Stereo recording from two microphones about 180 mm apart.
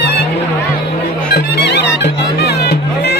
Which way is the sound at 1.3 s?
65° left (ahead or behind).